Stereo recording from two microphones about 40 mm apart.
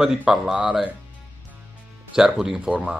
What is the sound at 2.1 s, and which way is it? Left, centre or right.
Speech, centre.